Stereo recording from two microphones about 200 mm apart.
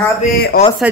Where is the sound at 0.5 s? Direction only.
50° left (ahead or behind).